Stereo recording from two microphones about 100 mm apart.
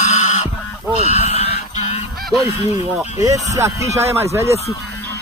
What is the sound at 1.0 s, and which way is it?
Goose, 90° left.